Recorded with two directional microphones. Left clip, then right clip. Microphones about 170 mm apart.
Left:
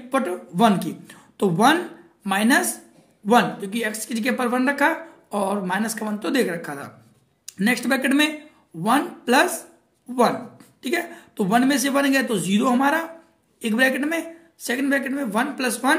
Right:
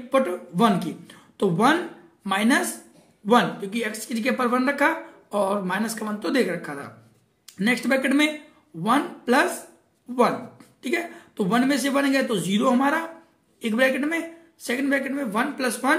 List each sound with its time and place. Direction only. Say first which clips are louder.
0.1 s a woman's voice: right 2 dB; 20° left (ahead or behind)
10.8 s a woman's voice: left 2 dB; 25° left (ahead or behind)